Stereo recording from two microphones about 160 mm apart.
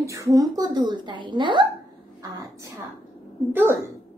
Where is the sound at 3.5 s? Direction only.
15° right (ahead or behind).